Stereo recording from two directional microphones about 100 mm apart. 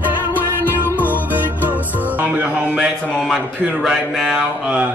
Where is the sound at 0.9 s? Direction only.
20° left (ahead or behind).